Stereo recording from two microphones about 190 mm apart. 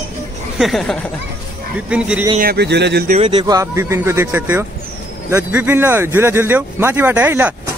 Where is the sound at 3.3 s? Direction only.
20° right (ahead or behind).